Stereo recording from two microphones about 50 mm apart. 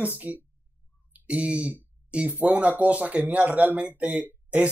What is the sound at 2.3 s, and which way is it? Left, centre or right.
Speech, right.